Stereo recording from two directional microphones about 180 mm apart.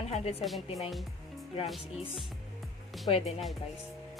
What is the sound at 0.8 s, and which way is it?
Speech, centre (ahead or behind).